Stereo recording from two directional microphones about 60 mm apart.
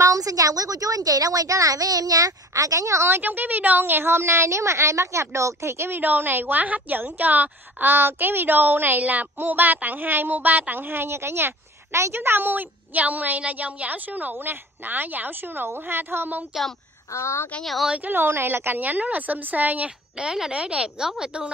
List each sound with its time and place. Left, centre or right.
0.0 s a woman's voice: right
3.2 s a woman's voice: right
17.1 s speech: left
17.8 s a woman's voice: right
18.1 s a woman's voice: right
20.2 s speech: centre